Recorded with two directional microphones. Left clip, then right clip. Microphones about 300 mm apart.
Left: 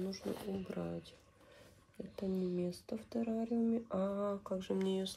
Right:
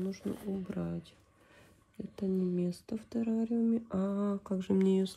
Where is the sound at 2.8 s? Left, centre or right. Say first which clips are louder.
Right 3 dB; right.